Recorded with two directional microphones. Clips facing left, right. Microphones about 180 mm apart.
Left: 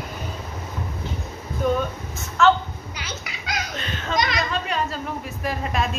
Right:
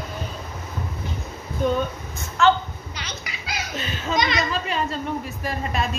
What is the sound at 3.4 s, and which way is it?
Speech, 5° right (ahead or behind).